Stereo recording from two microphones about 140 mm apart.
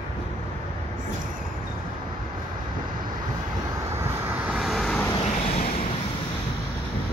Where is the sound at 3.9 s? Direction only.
10° right (ahead or behind).